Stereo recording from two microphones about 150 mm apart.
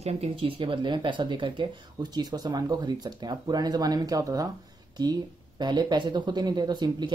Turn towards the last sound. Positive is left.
turn(degrees=-30)  # may be behind; listen again after turning